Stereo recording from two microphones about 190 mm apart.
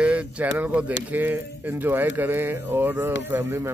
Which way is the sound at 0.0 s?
5° right (ahead or behind).